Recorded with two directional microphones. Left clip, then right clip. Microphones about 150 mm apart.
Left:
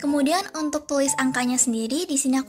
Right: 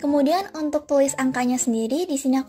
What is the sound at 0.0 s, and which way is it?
A woman's voice, 30° right (ahead or behind).